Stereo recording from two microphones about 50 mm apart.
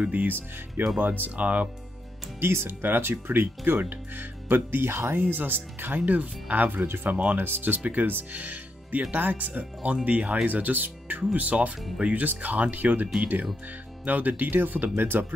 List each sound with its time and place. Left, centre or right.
0.0 s speech: right
1.4 s speech: right
2.4 s speech: right
5.2 s speech: right
7.3 s speech: right
7.8 s speech: right